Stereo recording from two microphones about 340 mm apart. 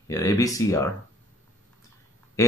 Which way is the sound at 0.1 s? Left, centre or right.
Centre.